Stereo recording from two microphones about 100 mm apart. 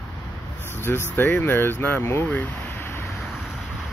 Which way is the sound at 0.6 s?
20° left (ahead or behind).